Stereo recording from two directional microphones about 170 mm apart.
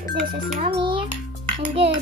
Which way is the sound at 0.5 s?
30° right (ahead or behind).